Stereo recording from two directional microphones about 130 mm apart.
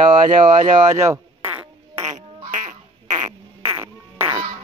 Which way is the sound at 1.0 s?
20° right (ahead or behind).